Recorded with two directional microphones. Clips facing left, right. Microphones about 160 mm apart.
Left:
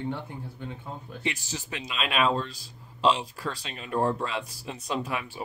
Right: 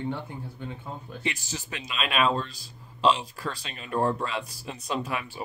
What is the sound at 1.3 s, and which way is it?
Speech, 25° left (ahead or behind).